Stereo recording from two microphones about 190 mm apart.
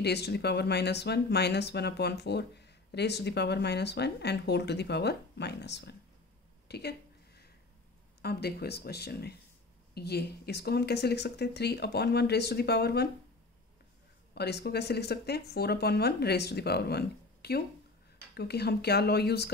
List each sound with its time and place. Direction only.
0.0 s speech: 60° left (ahead or behind)
6.7 s a sound: 60° left (ahead or behind)
8.2 s speech: 55° left (ahead or behind)
14.3 s speech: 60° left (ahead or behind)